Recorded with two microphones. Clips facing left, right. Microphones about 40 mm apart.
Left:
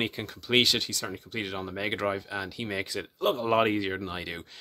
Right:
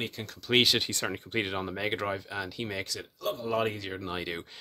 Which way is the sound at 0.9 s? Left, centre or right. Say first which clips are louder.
Right 2 dB; right.